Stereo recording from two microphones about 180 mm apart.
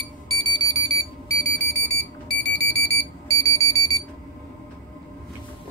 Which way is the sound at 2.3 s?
70° left (ahead or behind).